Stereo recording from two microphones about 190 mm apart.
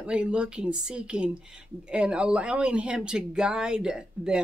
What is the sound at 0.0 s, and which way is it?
Speech, 5° right (ahead or behind).